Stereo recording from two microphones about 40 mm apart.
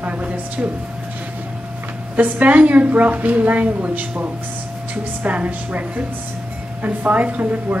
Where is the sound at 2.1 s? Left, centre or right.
Right.